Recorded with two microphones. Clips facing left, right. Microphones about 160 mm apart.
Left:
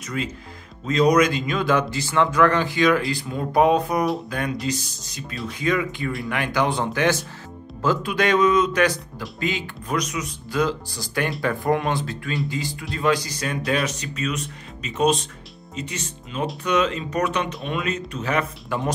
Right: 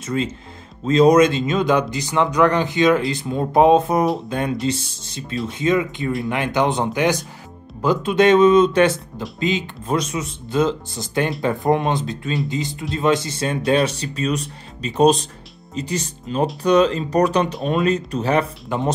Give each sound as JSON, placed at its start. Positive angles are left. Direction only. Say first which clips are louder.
{"t": 0.0, "sound": "speech", "louder": "right 5 dB", "side_deg": -25}
{"t": 18.7, "sound": "speech", "louder": "right 3 dB", "side_deg": -20}